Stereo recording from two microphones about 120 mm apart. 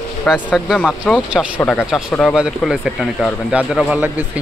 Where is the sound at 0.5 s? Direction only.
5° right (ahead or behind).